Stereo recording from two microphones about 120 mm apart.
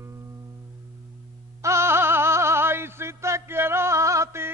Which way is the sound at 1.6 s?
25° right (ahead or behind).